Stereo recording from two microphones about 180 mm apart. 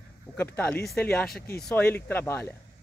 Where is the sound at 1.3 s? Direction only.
60° left (ahead or behind).